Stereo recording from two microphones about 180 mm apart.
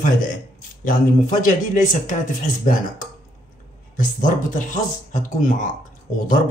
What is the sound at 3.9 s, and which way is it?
Speech, 45° left (ahead or behind).